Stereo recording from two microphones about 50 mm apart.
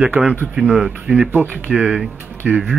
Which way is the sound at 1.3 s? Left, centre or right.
Right.